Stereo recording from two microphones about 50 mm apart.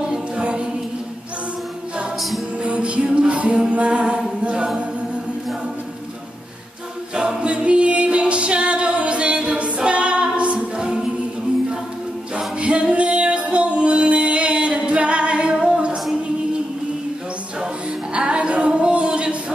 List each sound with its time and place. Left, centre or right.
0.1 s choir: centre
2.6 s music: right
7.2 s a capella: centre
12.5 s music: right
18.1 s music: right
18.7 s a sound: right